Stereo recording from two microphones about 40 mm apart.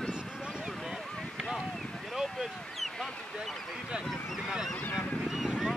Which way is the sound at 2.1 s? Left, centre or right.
Centre.